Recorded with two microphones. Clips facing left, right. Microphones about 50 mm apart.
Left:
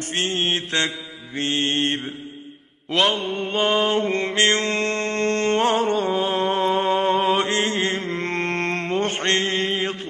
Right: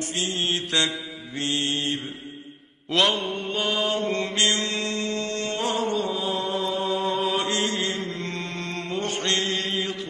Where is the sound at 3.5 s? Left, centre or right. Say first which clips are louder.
Left 6 dB; left.